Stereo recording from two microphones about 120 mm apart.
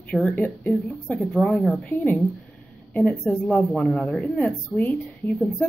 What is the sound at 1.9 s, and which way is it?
Speech, 20° left (ahead or behind).